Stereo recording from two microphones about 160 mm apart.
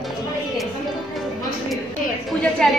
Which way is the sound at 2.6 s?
5° left (ahead or behind).